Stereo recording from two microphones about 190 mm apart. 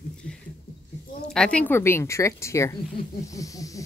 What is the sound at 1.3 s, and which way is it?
Speech, 5° left (ahead or behind).